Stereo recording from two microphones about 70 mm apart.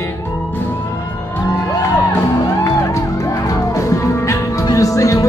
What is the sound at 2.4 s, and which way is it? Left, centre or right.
Music, left.